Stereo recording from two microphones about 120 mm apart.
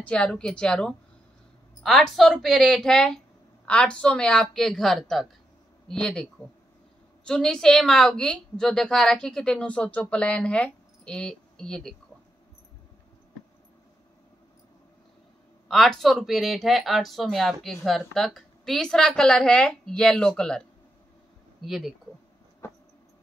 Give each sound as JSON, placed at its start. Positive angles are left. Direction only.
{"t": 0.0, "sound": "a woman's voice", "side_deg": 10}
{"t": 7.2, "sound": "speech", "side_deg": 5}
{"t": 15.7, "sound": "speech", "side_deg": 0}
{"t": 21.6, "sound": "speech", "side_deg": 0}
{"t": 22.6, "sound": "a sound", "side_deg": 20}